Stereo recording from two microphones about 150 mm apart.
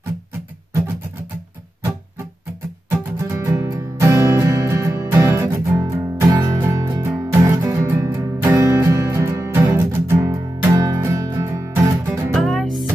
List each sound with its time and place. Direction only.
3.2 s music: 20° right (ahead or behind)
12.1 s music: centre (ahead or behind)